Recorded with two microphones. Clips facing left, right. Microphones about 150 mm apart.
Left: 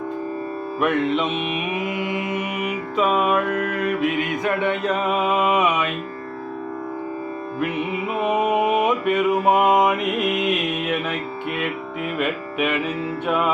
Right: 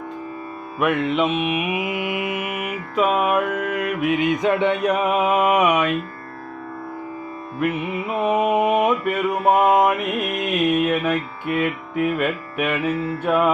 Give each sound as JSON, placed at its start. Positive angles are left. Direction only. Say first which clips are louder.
{"t": 0.7, "sound": "mantra", "louder": "right 1 dB", "side_deg": -5}
{"t": 7.6, "sound": "music", "louder": "right 2 dB", "side_deg": 0}